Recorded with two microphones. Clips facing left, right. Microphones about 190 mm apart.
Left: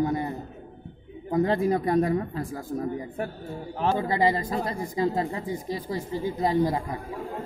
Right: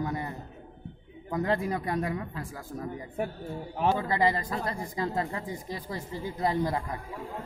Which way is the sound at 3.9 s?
25° left (ahead or behind).